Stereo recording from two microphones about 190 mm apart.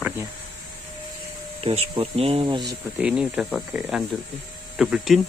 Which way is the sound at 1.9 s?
30° right (ahead or behind).